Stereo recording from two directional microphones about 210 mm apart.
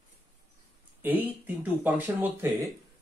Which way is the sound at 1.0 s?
10° right (ahead or behind).